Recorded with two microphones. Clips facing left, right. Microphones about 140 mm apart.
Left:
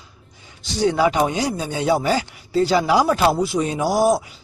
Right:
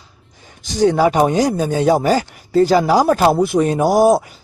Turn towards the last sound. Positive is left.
turn(degrees=-50)  # may be behind; listen again after turning